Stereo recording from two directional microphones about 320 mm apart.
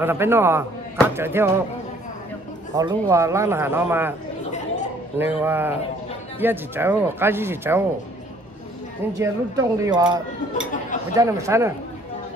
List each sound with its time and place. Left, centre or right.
0.0 s cutlery: centre
2.7 s cutlery: centre
4.5 s chatter: left
5.2 s cutlery: centre
9.2 s cutlery: centre